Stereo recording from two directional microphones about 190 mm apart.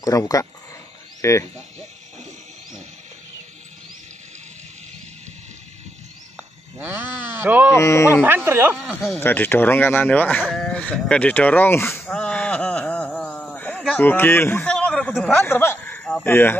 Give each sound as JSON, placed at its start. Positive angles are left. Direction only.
{"t": 0.0, "sound": "speech", "side_deg": 20}
{"t": 7.3, "sound": "speech", "side_deg": -10}
{"t": 7.7, "sound": "speech", "side_deg": 15}
{"t": 8.2, "sound": "speech", "side_deg": -10}
{"t": 9.2, "sound": "speech", "side_deg": 10}
{"t": 10.4, "sound": "a sound", "side_deg": 5}
{"t": 15.4, "sound": "speech", "side_deg": 10}